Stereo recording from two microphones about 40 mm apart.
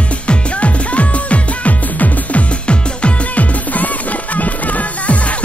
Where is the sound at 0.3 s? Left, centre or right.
Left.